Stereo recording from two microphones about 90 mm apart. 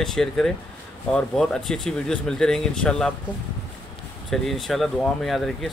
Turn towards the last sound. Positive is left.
turn(degrees=5)  # may be behind; listen again after turning